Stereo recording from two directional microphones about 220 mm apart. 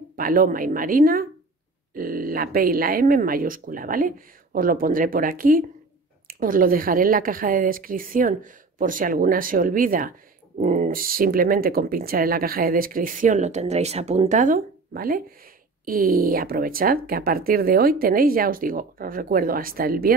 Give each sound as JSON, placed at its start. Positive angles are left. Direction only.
{"t": 0.1, "sound": "speech", "side_deg": -40}